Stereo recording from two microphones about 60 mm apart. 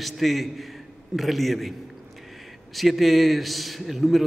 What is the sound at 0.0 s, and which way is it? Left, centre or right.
A man's voice, centre.